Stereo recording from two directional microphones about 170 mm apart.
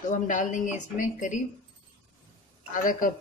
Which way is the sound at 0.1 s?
50° left (ahead or behind).